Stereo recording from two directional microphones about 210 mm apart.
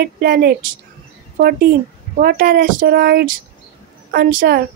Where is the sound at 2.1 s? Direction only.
45° right (ahead or behind).